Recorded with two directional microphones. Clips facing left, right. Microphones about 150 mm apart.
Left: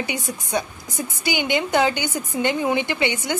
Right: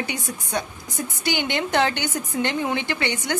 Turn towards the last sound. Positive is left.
turn(degrees=10)  # may be behind; listen again after turning